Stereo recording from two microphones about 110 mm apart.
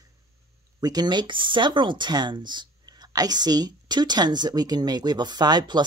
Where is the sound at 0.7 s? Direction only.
35° right (ahead or behind).